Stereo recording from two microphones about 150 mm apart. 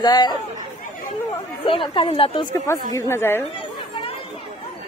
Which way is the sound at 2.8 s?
20° left (ahead or behind).